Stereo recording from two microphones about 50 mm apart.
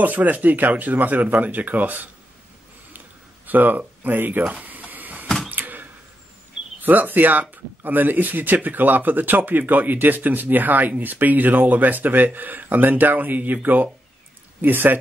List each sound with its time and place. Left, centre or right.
0.0 s speech: right
3.4 s a sound: right
6.8 s speech: right